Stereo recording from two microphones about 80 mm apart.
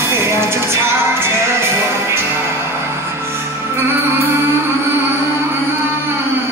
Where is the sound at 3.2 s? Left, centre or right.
Right.